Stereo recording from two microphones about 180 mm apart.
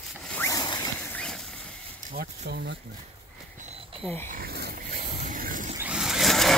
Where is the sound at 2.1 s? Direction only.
65° right (ahead or behind).